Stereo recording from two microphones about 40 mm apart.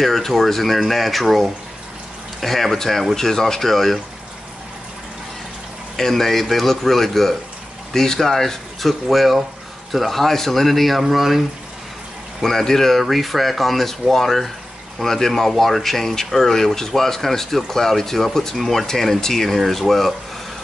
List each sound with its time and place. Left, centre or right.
0.0 s speech: centre
5.9 s speech: centre
12.4 s speech: centre